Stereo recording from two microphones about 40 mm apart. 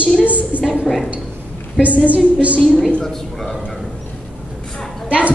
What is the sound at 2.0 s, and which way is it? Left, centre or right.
Speech, right.